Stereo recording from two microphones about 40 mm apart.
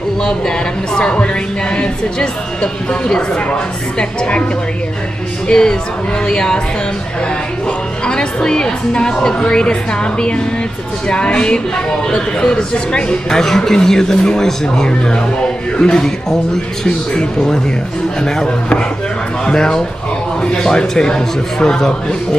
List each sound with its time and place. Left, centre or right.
0.2 s speech: centre
5.5 s a man's voice: centre
8.0 s music: left
8.4 s a man's voice: centre